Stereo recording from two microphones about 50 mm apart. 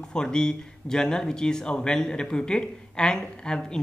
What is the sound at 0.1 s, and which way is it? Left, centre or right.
Speech, centre.